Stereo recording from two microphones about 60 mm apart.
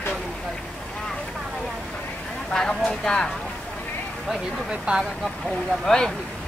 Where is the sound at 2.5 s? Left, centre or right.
Centre.